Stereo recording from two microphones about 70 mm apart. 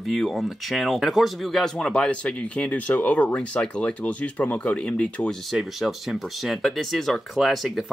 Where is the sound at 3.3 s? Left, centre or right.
Centre.